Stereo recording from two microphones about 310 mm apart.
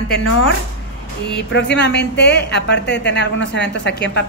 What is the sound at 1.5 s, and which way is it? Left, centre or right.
A woman's voice, left.